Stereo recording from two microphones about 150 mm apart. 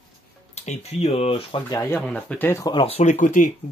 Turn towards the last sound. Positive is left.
turn(degrees=55)  # may be behind; listen again after turning